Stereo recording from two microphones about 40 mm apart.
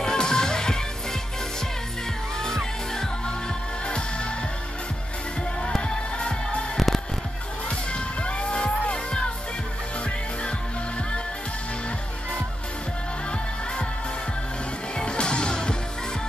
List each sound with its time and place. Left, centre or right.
0.0 s music: centre
2.4 s music: centre
3.8 s music: left
5.6 s music: left
6.9 s music: centre
7.9 s music: left
15.0 s music: left